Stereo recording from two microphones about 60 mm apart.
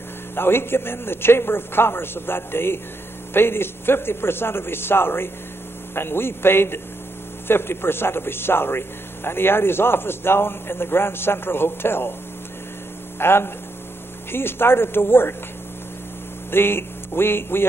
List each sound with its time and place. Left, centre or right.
0.4 s a man's voice: left
13.2 s a man's voice: left
16.4 s speech: left